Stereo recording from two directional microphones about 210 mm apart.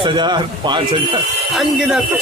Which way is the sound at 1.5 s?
Centre (ahead or behind).